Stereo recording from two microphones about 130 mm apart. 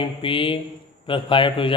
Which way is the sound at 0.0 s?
40° left (ahead or behind).